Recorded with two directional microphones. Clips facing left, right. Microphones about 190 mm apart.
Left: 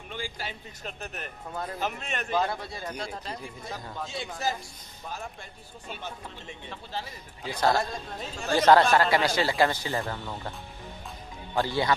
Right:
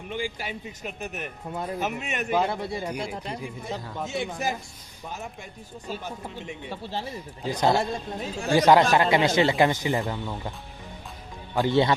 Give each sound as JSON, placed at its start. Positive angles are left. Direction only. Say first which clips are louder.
{"t": 0.1, "sound": "speech", "louder": "right 5 dB", "side_deg": -15}
{"t": 6.7, "sound": "speech", "louder": "right 4 dB", "side_deg": -30}
{"t": 7.4, "sound": "speech", "louder": "right 3 dB", "side_deg": -20}
{"t": 11.5, "sound": "speech", "louder": "right 6 dB", "side_deg": -20}